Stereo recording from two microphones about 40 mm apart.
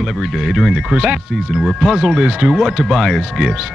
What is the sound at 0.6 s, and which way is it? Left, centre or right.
Speech, centre.